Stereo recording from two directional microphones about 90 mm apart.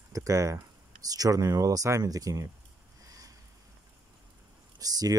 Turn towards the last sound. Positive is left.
turn(degrees=-45)  # may be behind; listen again after turning